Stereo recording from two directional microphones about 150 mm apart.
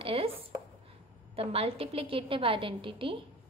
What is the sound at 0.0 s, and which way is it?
Chopping, 40° right (ahead or behind).